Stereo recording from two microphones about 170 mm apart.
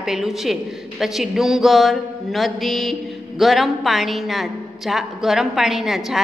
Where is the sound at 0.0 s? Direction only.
Centre (ahead or behind).